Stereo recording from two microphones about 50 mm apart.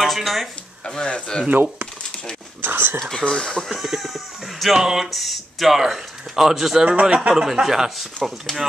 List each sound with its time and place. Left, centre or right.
0.0 s speech: centre
0.8 s speech: centre
1.5 s speech: right
3.2 s speech: centre
3.6 s speech: centre
6.8 s a man's voice: right; by 8.3 s centre